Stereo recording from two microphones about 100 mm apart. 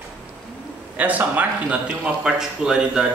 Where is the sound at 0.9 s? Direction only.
15° right (ahead or behind).